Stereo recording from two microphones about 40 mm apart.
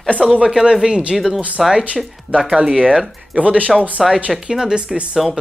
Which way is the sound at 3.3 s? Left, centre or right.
Right.